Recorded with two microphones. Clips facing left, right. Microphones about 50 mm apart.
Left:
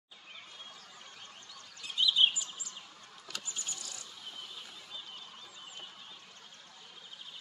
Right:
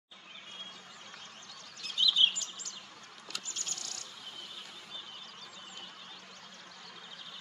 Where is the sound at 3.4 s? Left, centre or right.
Centre.